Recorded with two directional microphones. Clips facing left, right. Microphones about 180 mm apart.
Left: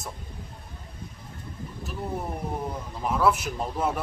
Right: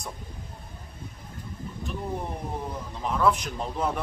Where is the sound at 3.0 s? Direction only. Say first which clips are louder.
Left 1 dB; 5° left (ahead or behind).